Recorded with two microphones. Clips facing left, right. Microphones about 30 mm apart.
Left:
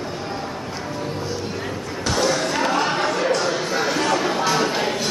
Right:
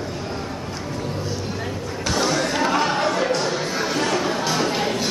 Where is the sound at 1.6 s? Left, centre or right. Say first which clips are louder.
Even; centre.